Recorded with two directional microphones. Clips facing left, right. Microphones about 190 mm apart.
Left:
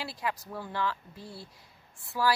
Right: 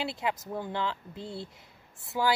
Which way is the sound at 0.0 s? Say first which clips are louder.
Right 3 dB; 25° right (ahead or behind).